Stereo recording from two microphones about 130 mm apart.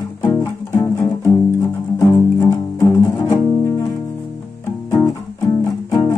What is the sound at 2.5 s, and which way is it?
Music, 30° left (ahead or behind).